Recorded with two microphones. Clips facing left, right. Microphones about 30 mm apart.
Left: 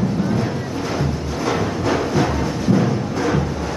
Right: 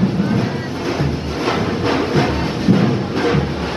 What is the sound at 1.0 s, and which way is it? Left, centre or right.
Music, right.